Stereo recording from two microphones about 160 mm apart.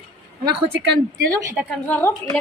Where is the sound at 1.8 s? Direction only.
10° left (ahead or behind).